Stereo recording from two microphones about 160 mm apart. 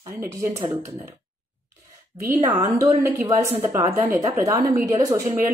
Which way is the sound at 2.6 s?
20° right (ahead or behind).